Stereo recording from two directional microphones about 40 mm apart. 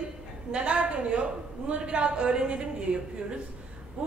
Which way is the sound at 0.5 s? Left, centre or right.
Right.